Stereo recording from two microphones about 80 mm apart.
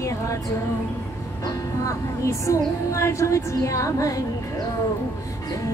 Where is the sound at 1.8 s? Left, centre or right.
Left.